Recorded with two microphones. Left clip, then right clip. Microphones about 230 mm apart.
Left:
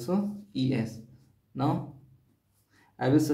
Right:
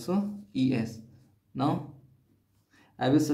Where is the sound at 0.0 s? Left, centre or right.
Centre.